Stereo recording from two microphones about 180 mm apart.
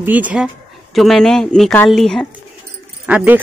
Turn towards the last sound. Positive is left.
turn(degrees=-5)  # may be behind; listen again after turning